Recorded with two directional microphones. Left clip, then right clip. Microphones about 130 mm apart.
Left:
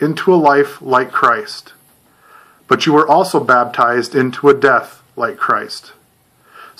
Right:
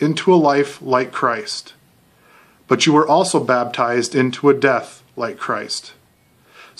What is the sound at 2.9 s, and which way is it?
Speech, 35° right (ahead or behind).